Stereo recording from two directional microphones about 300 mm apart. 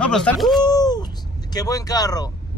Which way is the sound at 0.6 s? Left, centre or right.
Centre.